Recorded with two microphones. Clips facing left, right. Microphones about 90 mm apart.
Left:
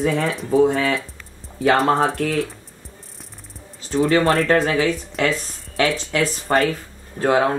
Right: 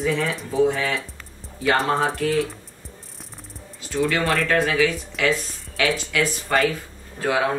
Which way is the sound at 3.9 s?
40° left (ahead or behind).